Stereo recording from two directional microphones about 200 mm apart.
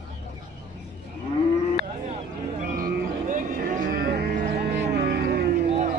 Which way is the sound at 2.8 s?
40° right (ahead or behind).